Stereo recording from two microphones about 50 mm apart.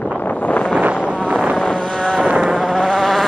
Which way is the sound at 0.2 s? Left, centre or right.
Left.